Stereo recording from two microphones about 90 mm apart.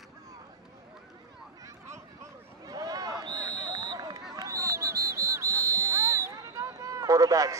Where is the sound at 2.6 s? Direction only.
45° right (ahead or behind).